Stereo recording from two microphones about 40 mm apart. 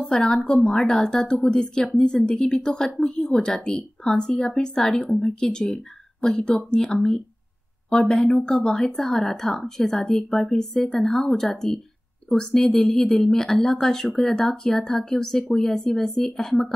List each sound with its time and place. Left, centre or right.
0.1 s a woman's voice: centre
8.9 s a woman's voice: centre